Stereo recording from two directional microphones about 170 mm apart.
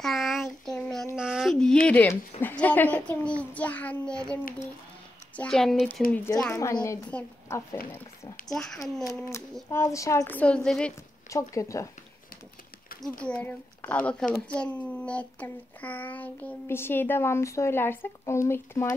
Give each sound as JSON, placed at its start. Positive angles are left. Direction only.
{"t": 0.0, "sound": "a sound", "side_deg": 0}
{"t": 1.1, "sound": "a child's voice", "side_deg": -5}
{"t": 8.5, "sound": "a woman's voice", "side_deg": 0}
{"t": 9.3, "sound": "a child's voice", "side_deg": 15}
{"t": 11.2, "sound": "a child's voice", "side_deg": 20}
{"t": 13.2, "sound": "a child's voice", "side_deg": 5}